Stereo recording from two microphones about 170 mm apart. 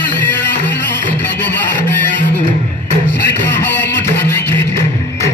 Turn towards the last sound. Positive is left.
turn(degrees=10)  # may be behind; listen again after turning